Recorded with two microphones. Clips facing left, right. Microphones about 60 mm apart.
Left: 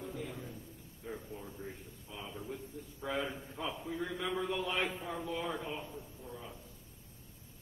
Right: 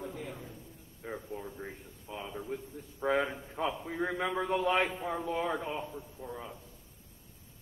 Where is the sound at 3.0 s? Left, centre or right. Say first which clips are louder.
Right 7 dB; right.